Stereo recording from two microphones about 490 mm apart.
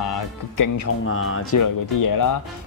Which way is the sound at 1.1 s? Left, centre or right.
Left.